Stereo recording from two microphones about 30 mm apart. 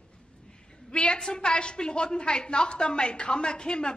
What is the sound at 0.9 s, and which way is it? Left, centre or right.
Speech, left.